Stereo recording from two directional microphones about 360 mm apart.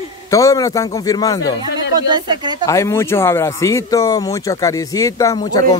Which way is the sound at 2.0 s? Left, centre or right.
Centre.